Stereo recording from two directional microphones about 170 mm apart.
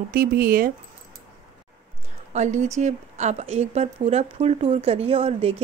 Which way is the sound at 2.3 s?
45° right (ahead or behind).